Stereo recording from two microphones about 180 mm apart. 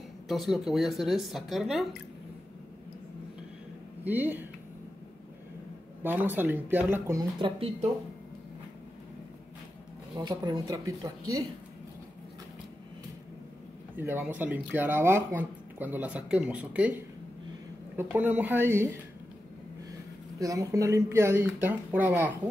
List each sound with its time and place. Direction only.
0.3 s speech: centre (ahead or behind)
4.0 s speech: 10° right (ahead or behind)
6.0 s speech: 10° right (ahead or behind); by 7.7 s 25° right (ahead or behind)
10.1 s speech: 25° right (ahead or behind)
13.9 s speech: 10° right (ahead or behind)
20.3 s speech: 20° right (ahead or behind)